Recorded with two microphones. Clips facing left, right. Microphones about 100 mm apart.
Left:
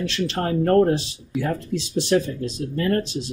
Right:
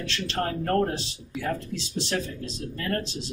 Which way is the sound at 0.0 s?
20° left (ahead or behind).